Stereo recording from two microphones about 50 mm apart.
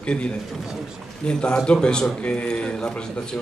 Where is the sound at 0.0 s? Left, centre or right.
Left.